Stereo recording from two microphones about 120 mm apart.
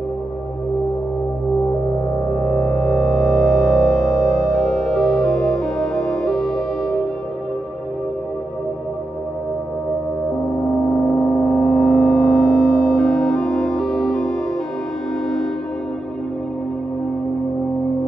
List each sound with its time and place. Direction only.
2.3 s music: 10° left (ahead or behind)
3.3 s music: 5° left (ahead or behind)
11.1 s gong: 15° left (ahead or behind)
11.7 s music: centre (ahead or behind)